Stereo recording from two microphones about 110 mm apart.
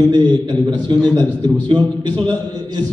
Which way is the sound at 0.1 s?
45° right (ahead or behind).